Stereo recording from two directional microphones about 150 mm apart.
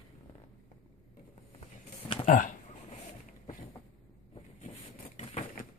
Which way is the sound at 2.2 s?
60° left (ahead or behind).